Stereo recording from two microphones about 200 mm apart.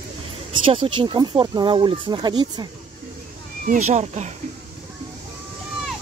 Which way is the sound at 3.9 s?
35° right (ahead or behind).